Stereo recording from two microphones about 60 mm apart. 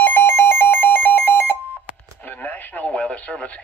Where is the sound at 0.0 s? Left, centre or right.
Left.